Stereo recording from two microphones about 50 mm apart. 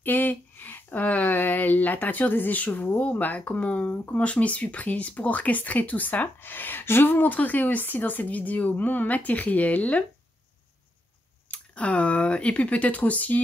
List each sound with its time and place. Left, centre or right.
0.0 s a sound: left
3.9 s speech: left
11.5 s speech: left